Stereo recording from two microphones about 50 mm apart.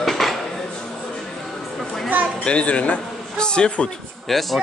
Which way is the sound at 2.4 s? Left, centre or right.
Left.